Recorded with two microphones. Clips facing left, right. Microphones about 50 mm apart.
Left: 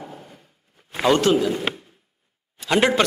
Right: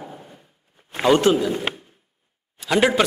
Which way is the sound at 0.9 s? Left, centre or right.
Centre.